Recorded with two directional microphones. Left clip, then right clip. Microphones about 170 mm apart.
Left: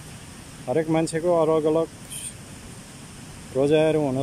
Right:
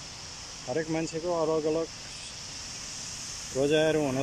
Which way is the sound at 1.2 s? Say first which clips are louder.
Left 7 dB; 30° left (ahead or behind).